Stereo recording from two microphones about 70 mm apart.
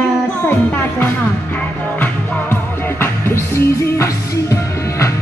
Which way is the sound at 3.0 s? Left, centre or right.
Left.